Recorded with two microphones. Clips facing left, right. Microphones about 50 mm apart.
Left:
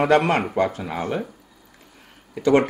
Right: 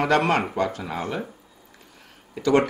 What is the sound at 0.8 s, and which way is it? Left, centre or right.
Speech, centre.